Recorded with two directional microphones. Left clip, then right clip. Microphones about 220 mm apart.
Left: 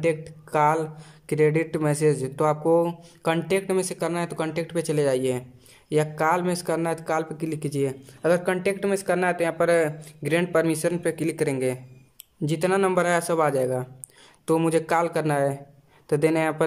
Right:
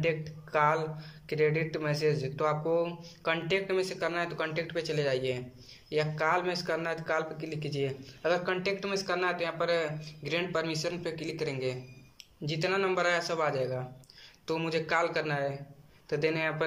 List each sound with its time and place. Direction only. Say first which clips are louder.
0.0 s speech: left 6 dB; 25° left (ahead or behind)